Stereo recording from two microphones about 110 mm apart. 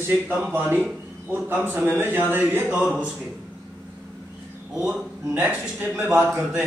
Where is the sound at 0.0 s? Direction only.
20° right (ahead or behind).